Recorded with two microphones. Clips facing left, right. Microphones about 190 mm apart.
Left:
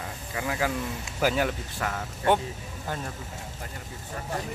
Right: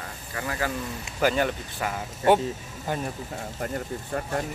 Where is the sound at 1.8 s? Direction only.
10° right (ahead or behind).